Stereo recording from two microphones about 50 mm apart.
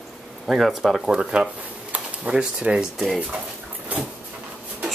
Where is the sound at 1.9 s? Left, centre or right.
Right.